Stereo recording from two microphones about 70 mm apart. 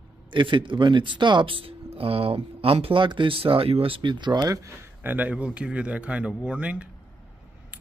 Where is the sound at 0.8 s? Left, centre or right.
Right.